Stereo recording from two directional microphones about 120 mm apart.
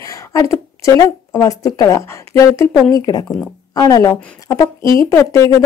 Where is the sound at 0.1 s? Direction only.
25° left (ahead or behind).